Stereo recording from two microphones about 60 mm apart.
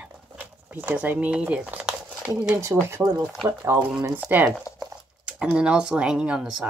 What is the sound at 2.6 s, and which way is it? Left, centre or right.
Speech, right.